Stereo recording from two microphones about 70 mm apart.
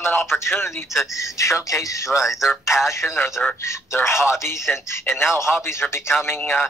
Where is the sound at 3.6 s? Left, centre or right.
Left.